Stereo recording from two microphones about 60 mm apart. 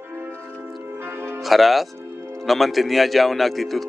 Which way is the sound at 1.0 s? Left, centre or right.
Right.